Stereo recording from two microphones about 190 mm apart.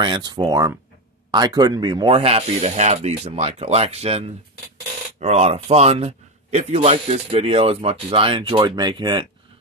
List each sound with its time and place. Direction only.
0.0 s a man's voice: 20° right (ahead or behind)